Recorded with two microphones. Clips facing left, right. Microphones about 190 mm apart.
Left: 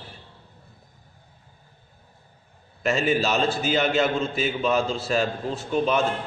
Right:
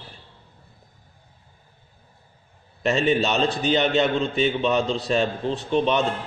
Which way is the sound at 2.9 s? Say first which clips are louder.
Right 2 dB; centre (ahead or behind).